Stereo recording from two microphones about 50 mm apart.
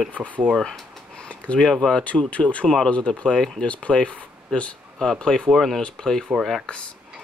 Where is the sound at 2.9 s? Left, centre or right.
Left.